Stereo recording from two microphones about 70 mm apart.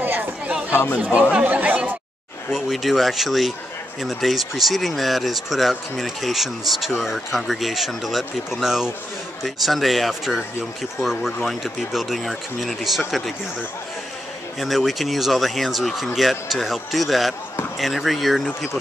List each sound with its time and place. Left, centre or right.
0.0 s chatter: right
0.7 s speech: left
0.9 s speech: centre
1.3 s chatter: right
2.5 s speech: centre
14.6 s speech: centre